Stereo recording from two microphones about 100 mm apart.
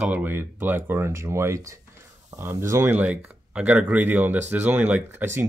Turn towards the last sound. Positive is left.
turn(degrees=-20)  # may be behind; listen again after turning